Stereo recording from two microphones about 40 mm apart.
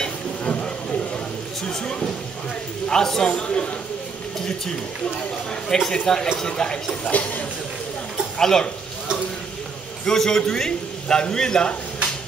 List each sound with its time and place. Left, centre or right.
0.4 s a sound: left; by 2.1 s centre
2.9 s a man's voice: centre
3.3 s speech: left
5.0 s a man's voice: centre
7.1 s speech: left
8.4 s a man's voice: centre
10.0 s a man's voice: centre